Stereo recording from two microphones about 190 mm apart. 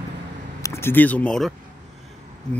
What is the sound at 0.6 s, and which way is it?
Speech, 10° left (ahead or behind).